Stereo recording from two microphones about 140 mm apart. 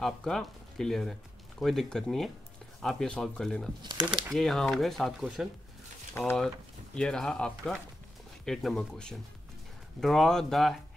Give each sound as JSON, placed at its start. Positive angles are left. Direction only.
{"t": 0.0, "sound": "speech", "side_deg": 5}
{"t": 3.8, "sound": "speech", "side_deg": -30}
{"t": 4.1, "sound": "speech", "side_deg": 0}
{"t": 7.0, "sound": "speech", "side_deg": 5}